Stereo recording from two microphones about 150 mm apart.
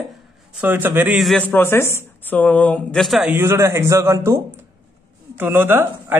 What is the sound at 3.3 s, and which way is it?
A man's voice, 15° right (ahead or behind).